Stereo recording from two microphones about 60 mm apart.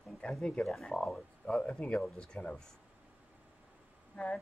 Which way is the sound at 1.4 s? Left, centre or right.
Centre.